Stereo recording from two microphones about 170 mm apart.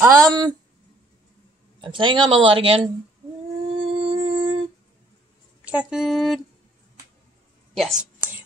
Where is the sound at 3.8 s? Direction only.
30° right (ahead or behind).